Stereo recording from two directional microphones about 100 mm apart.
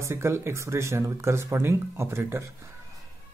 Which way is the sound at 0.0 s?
25° right (ahead or behind).